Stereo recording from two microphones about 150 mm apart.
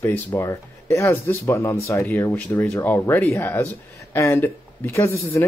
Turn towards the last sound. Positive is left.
turn(degrees=15)  # may be behind; listen again after turning